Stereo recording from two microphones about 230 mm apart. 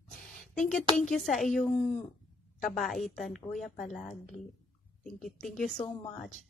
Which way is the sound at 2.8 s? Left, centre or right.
Centre.